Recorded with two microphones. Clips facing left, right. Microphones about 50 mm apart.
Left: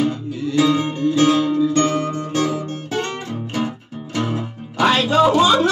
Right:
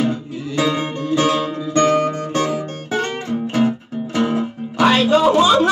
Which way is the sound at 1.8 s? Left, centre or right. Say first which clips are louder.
Right 3 dB; right.